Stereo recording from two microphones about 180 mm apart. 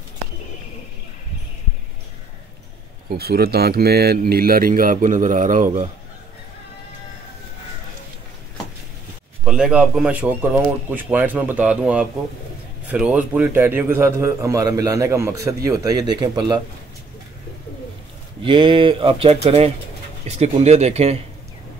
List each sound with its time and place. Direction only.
3.1 s speech: 60° right (ahead or behind); by 5.9 s 45° right (ahead or behind)
9.4 s a man's voice: 5° right (ahead or behind); by 16.6 s 25° right (ahead or behind)
18.4 s speech: 30° right (ahead or behind)